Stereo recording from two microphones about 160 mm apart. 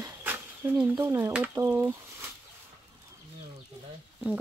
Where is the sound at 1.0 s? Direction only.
15° right (ahead or behind).